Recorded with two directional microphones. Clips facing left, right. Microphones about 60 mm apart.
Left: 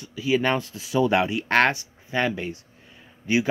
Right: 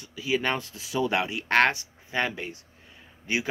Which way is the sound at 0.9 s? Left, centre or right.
Left.